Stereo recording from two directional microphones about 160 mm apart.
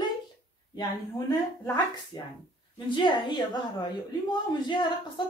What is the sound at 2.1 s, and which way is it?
Speech, 25° left (ahead or behind).